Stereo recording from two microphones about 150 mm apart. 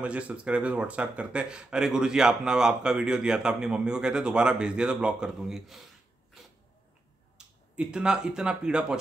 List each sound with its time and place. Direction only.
0.0 s speech: 10° right (ahead or behind)
6.4 s sneeze: 5° right (ahead or behind)
7.3 s speech: 5° right (ahead or behind)